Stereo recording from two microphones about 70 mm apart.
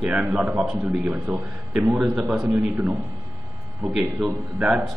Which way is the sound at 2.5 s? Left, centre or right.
Right.